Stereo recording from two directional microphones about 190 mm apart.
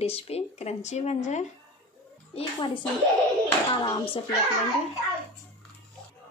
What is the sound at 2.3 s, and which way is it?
A woman's voice, 25° left (ahead or behind).